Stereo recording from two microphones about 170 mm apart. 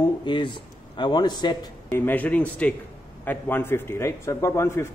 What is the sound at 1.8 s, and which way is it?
A man's voice, 10° left (ahead or behind).